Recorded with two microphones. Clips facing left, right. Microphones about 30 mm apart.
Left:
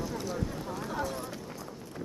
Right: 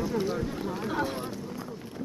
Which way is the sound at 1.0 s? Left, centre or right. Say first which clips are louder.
Right 4 dB; right.